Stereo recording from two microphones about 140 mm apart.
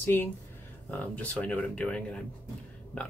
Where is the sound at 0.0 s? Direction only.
15° left (ahead or behind).